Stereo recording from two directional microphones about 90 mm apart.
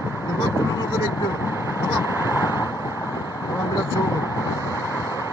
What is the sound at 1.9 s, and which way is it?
Vehicle, 30° right (ahead or behind).